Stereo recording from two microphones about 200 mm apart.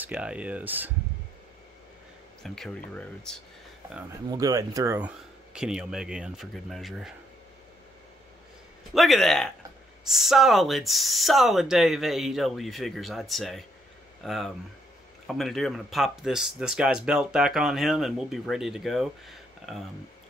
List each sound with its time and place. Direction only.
0.0 s speech: 5° right (ahead or behind)
2.4 s speech: centre (ahead or behind)
4.3 s speech: 20° right (ahead or behind); by 7.2 s centre (ahead or behind)
8.9 s speech: centre (ahead or behind)